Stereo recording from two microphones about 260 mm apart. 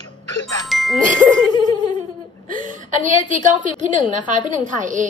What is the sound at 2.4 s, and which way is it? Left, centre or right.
A woman's voice, right.